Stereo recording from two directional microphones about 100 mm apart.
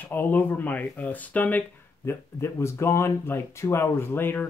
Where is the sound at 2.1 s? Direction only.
25° left (ahead or behind).